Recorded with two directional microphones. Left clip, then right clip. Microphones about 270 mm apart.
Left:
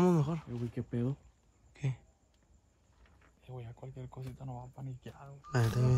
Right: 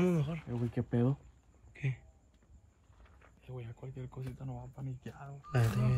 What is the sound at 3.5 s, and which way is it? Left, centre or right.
Speech, left.